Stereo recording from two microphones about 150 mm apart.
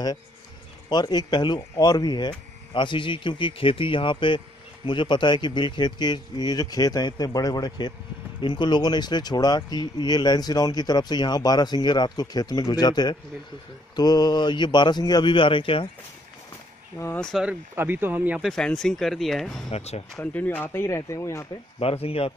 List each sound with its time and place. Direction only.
0.8 s speech: 30° left (ahead or behind)
17.2 s speech: centre (ahead or behind)
17.5 s speech: 10° right (ahead or behind)
18.5 s speech: 5° left (ahead or behind)
19.7 s speech: 45° left (ahead or behind)
20.2 s speech: 10° left (ahead or behind)
21.7 s speech: 40° left (ahead or behind)